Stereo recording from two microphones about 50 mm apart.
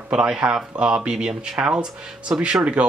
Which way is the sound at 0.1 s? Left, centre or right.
Centre.